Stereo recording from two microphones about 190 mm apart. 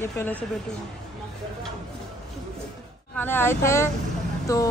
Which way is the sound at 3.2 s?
10° left (ahead or behind).